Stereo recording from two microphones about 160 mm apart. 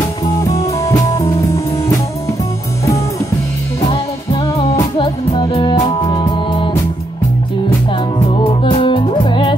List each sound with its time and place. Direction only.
0.9 s music: 20° left (ahead or behind)
3.8 s music: 35° left (ahead or behind)
8.3 s music: 35° left (ahead or behind)